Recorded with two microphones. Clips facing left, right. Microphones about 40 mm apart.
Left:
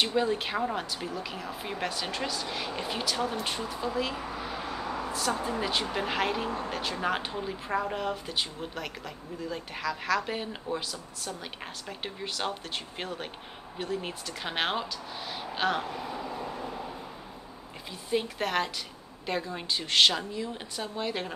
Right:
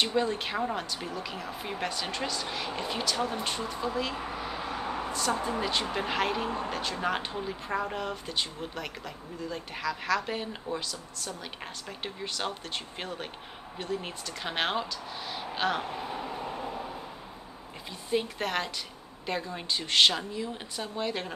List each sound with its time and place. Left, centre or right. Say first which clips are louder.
0.0 s speech: left 1 dB; centre
4.4 s vehicle: even; centre
4.6 s a sound: right 1 dB; right
5.6 s speech: even; centre
16.0 s speech: right 1 dB; right
16.3 s train: even; right
18.1 s speech: left 1 dB; centre